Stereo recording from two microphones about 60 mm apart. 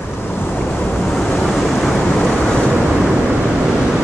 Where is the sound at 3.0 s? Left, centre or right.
Centre.